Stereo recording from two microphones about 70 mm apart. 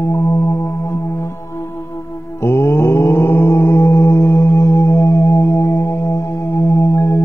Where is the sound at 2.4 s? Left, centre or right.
Left.